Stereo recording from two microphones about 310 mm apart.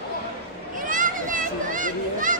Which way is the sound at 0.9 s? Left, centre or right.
Right.